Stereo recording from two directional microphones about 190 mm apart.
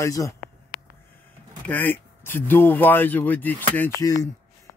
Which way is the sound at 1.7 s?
10° left (ahead or behind).